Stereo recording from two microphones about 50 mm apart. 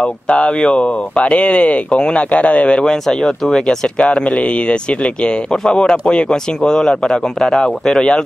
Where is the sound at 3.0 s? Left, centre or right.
Centre.